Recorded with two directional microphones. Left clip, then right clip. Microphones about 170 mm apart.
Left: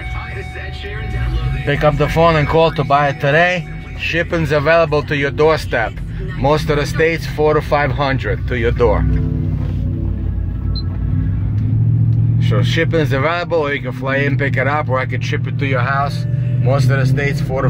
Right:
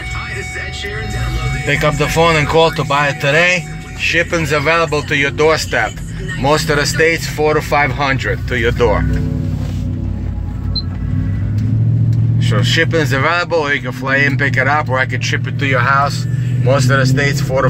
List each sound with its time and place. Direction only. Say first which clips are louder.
1.7 s speech: even; 25° left (ahead or behind)
6.4 s speech: right 2 dB; 5° left (ahead or behind)
12.4 s speech: right 4 dB; 10° left (ahead or behind)